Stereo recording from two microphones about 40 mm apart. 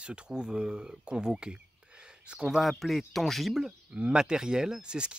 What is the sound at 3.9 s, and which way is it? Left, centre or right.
Speech, right.